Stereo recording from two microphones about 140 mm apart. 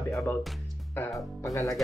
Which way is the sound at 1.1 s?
20° left (ahead or behind).